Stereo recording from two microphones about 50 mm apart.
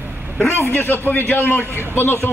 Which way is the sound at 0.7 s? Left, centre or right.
Left.